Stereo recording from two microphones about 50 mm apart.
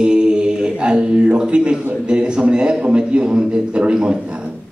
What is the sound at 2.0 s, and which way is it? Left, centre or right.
A man's voice, centre.